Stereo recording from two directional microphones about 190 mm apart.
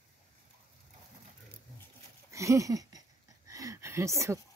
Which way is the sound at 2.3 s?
15° right (ahead or behind).